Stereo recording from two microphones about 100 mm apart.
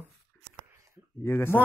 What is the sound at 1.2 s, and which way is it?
Speech, 25° left (ahead or behind).